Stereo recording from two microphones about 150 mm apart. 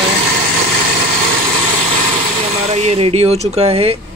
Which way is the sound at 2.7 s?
45° right (ahead or behind).